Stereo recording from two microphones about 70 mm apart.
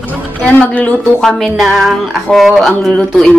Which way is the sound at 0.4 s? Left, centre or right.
Left.